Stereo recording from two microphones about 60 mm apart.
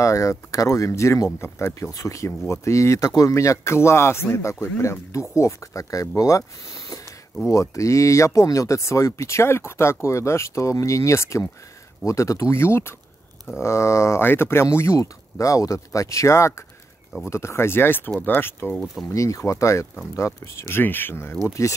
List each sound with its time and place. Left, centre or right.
0.0 s speech: left
14.2 s speech: left
19.1 s speech: left
21.6 s speech: left